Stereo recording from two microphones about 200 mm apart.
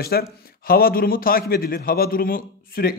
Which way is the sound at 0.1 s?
50° left (ahead or behind).